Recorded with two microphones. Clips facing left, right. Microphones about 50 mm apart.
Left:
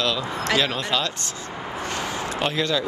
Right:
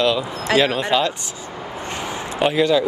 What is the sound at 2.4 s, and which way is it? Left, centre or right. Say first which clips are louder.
Speech: right 8 dB; centre.